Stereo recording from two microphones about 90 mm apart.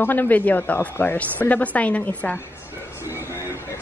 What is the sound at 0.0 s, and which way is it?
A woman's voice, 20° left (ahead or behind).